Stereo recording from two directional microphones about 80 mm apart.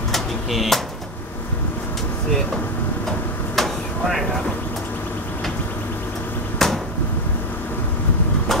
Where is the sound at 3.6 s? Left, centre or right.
Centre.